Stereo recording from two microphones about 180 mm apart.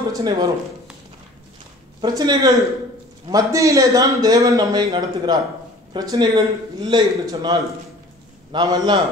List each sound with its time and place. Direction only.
0.1 s a man's voice: 20° right (ahead or behind)
2.0 s a man's voice: 25° right (ahead or behind)